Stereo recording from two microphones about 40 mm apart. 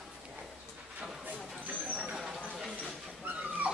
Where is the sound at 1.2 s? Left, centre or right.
Right.